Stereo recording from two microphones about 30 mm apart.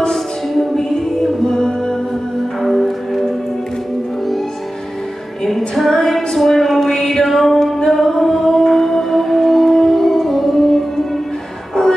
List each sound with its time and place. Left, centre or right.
0.1 s music: centre
2.6 s music: centre
5.4 s music: centre
11.8 s music: centre